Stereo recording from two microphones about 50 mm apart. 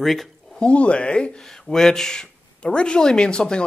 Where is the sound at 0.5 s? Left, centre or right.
Left.